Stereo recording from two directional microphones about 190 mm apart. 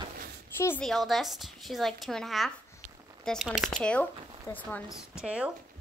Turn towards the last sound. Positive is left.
turn(degrees=-5)  # may be behind; listen again after turning